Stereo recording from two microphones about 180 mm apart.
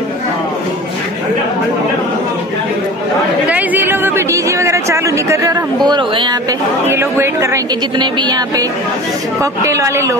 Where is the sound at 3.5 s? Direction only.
10° right (ahead or behind).